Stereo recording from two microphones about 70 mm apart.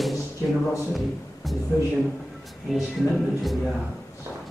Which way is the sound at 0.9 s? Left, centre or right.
Centre.